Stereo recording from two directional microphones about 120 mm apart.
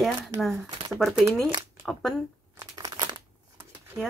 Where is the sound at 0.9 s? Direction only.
5° right (ahead or behind).